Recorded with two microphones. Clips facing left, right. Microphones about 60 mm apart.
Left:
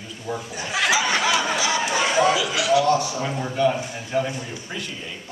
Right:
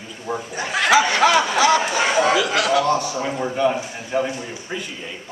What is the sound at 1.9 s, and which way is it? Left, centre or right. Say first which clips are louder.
Speech: right 2 dB; right.